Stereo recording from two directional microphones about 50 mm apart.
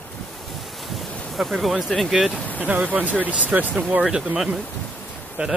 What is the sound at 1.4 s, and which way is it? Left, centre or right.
Speech, centre.